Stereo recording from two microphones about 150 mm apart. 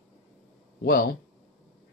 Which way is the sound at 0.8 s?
70° left (ahead or behind).